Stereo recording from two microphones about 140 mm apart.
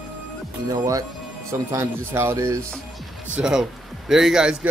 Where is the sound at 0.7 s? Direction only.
25° right (ahead or behind).